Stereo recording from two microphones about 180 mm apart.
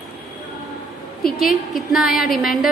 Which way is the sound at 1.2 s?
Centre (ahead or behind).